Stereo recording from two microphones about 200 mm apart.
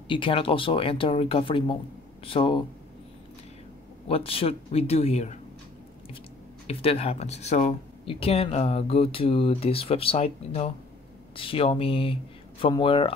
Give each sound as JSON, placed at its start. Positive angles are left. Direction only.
{"t": 0.1, "sound": "speech", "side_deg": 25}
{"t": 4.1, "sound": "speech", "side_deg": 30}
{"t": 6.7, "sound": "speech", "side_deg": 30}